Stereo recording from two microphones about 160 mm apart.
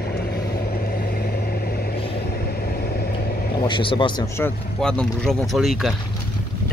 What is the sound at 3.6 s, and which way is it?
Speech, 30° left (ahead or behind).